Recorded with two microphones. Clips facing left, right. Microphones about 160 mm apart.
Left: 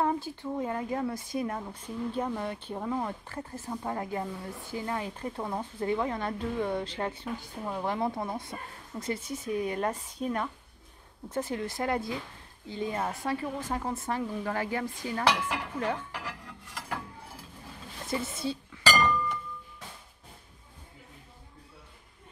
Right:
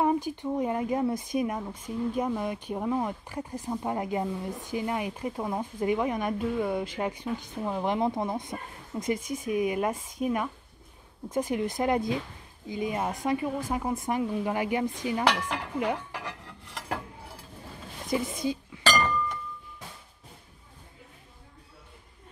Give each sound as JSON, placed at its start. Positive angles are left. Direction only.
{"t": 0.0, "sound": "speech", "side_deg": -15}
{"t": 18.0, "sound": "a woman's voice", "side_deg": -15}